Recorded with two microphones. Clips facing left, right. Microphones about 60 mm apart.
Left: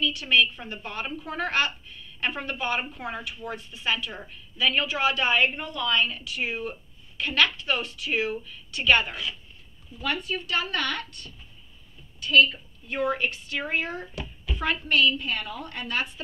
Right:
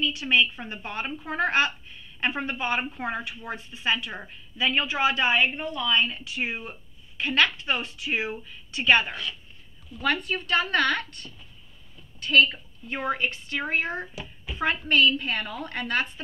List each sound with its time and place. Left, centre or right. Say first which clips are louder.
0.0 s a woman's voice: even; right
10.2 s a woman's voice: right 3 dB; right